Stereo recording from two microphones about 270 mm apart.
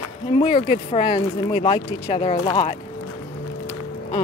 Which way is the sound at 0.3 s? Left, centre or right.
Left.